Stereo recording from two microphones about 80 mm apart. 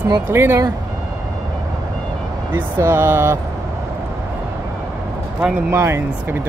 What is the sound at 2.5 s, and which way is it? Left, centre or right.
Speech, right.